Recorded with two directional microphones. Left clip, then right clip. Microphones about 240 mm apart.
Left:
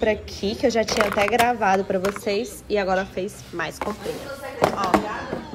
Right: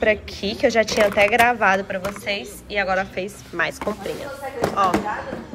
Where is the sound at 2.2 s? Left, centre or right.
Left.